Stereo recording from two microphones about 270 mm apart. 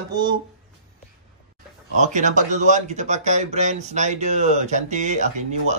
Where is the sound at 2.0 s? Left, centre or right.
Right.